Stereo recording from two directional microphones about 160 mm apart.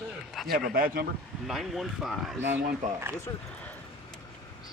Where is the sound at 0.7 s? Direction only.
65° right (ahead or behind).